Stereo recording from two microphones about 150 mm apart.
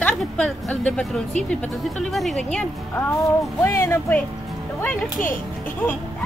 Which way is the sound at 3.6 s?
20° left (ahead or behind).